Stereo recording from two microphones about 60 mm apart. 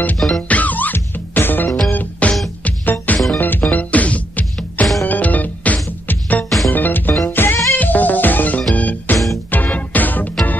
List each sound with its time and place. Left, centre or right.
0.3 s music: left